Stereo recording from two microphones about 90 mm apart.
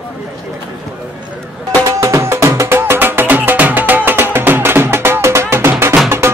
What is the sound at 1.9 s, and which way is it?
Music, 35° right (ahead or behind).